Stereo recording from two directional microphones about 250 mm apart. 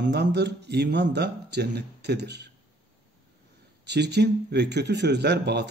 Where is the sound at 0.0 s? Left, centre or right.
Right.